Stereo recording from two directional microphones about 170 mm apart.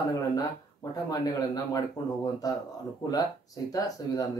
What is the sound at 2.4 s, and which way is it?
Speech, 20° left (ahead or behind).